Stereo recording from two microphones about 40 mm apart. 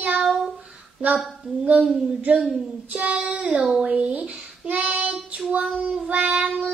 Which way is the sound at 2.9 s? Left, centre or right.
Right.